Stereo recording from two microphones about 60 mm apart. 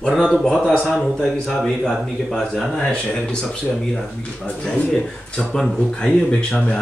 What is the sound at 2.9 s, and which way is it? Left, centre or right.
Speech, centre.